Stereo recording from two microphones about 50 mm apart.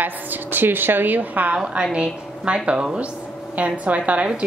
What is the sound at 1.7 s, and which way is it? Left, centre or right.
A woman's voice, right.